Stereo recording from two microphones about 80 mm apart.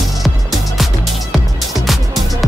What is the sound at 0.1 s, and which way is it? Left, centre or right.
Music, centre.